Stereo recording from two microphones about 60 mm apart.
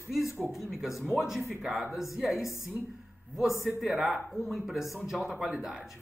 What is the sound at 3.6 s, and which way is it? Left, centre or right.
Speech, centre.